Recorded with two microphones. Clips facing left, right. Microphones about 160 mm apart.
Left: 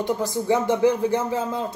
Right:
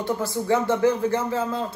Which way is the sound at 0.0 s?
15° left (ahead or behind).